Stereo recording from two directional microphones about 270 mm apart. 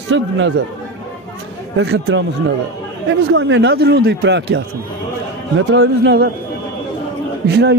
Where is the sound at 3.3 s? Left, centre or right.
Right.